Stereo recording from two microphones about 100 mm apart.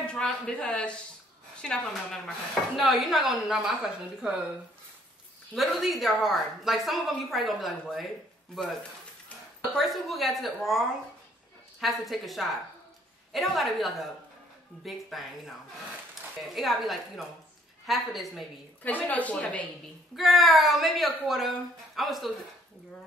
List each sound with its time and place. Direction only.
0.0 s a woman's voice: 10° left (ahead or behind)
5.5 s speech: centre (ahead or behind)
9.8 s speech: centre (ahead or behind)
11.8 s speech: centre (ahead or behind)
16.5 s speech: centre (ahead or behind)
18.8 s a woman's voice: 15° left (ahead or behind)
20.2 s speech: centre (ahead or behind)